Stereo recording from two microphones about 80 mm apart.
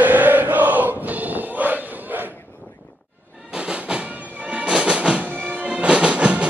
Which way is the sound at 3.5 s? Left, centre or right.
Centre.